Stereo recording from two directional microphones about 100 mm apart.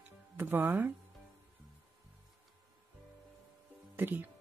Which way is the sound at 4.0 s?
20° right (ahead or behind).